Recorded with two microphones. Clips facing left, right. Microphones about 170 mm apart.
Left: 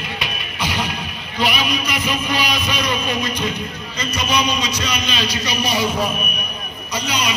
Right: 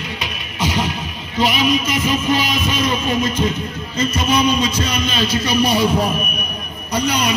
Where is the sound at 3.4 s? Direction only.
35° right (ahead or behind).